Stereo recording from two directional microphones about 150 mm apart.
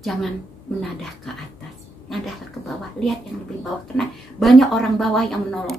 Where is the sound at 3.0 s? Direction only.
Centre (ahead or behind).